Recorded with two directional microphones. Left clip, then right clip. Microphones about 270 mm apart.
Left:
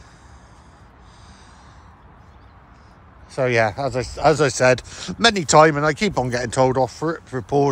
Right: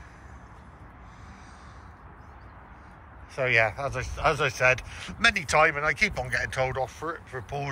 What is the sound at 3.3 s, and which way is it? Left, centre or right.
Speech, centre.